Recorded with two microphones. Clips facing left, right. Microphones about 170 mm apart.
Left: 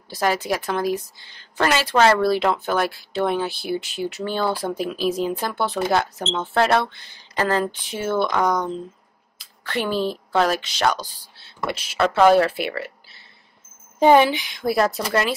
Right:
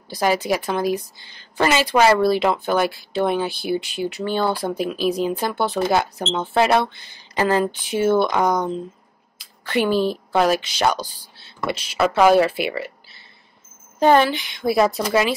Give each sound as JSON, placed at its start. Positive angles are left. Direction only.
{"t": 0.1, "sound": "speech", "side_deg": 0}
{"t": 6.3, "sound": "speech", "side_deg": -10}
{"t": 8.4, "sound": "speech", "side_deg": -20}
{"t": 9.7, "sound": "speech", "side_deg": -5}
{"t": 13.9, "sound": "speech", "side_deg": 15}
{"t": 14.5, "sound": "speech", "side_deg": -5}